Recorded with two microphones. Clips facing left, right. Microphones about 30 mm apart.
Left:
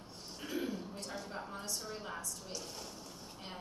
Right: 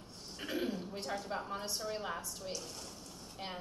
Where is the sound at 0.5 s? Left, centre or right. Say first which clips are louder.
Right 2 dB; right.